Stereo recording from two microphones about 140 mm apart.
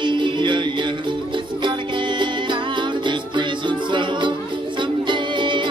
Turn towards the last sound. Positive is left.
turn(degrees=-35)  # may be behind; listen again after turning